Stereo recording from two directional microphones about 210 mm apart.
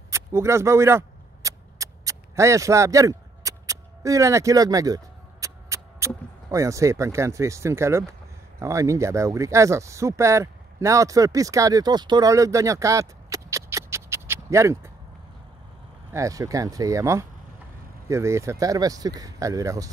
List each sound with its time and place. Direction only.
0.1 s speech: 15° right (ahead or behind)
16.1 s speech: 15° right (ahead or behind)